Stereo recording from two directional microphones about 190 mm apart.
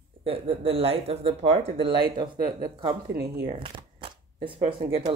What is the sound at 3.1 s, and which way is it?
Speech, 55° right (ahead or behind).